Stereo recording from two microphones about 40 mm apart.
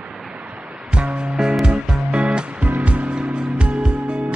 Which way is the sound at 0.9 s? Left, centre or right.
Right.